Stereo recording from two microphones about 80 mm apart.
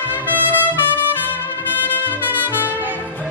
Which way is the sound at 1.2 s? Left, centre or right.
Left.